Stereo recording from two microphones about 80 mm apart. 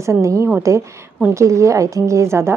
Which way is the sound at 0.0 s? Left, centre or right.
Right.